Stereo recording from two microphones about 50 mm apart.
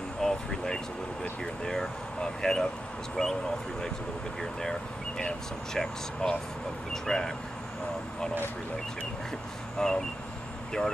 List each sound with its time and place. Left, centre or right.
0.2 s a sound: centre
1.4 s speech: centre
9.8 s speech: centre